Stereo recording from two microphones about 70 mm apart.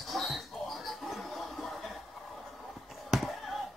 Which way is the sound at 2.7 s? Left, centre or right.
Centre.